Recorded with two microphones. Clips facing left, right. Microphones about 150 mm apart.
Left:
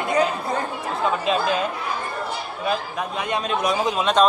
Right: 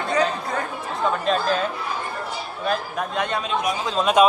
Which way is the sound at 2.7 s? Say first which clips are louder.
Even; 5° left (ahead or behind).